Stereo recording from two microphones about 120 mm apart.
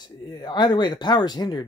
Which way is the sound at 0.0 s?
35° left (ahead or behind).